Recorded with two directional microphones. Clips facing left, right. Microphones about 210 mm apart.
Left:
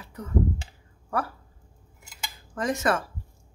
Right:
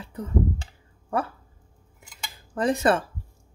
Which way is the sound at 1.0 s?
25° right (ahead or behind).